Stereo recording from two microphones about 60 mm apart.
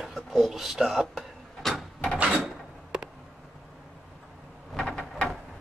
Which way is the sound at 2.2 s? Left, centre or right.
Centre.